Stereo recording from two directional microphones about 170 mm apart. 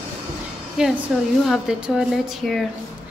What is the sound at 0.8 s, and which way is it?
A woman's voice, 5° right (ahead or behind).